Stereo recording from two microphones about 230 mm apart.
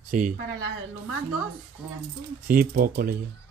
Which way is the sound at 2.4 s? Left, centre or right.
Right.